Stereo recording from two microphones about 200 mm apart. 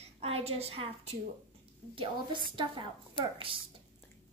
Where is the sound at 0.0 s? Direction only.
30° right (ahead or behind).